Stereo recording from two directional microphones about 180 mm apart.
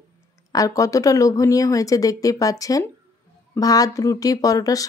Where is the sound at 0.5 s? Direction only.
20° left (ahead or behind).